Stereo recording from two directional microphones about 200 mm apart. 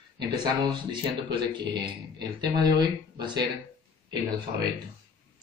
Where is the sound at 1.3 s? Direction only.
25° right (ahead or behind).